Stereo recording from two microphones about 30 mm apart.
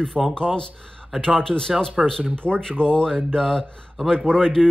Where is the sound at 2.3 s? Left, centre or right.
Left.